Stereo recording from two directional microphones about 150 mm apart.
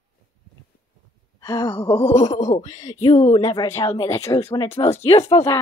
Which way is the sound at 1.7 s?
35° left (ahead or behind).